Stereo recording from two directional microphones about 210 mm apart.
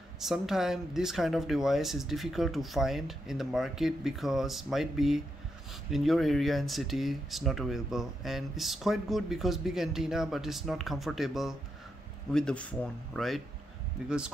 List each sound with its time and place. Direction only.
0.2 s speech: centre (ahead or behind)